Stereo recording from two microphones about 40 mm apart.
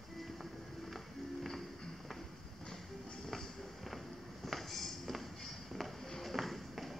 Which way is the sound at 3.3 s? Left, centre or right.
Centre.